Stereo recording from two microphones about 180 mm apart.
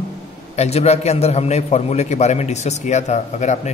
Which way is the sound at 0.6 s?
35° left (ahead or behind).